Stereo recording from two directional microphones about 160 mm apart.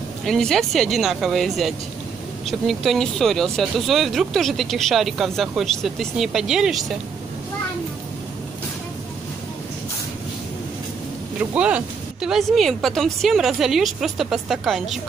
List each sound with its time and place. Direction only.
0.2 s speech: centre (ahead or behind)
11.5 s speech: 10° right (ahead or behind)